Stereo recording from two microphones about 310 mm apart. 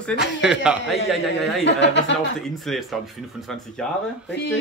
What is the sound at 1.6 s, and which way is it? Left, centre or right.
Speech, left.